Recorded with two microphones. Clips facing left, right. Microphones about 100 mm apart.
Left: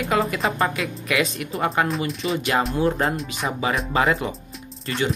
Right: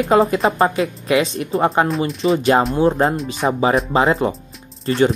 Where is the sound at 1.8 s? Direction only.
Centre (ahead or behind).